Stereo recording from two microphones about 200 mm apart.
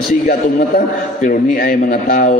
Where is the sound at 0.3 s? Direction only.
45° left (ahead or behind).